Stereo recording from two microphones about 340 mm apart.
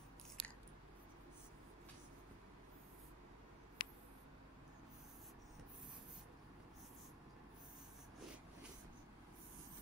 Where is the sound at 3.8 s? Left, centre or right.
Left.